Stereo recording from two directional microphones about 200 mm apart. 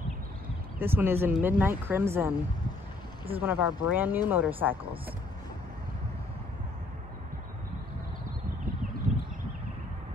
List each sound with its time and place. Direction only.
0.7 s speech: 10° right (ahead or behind)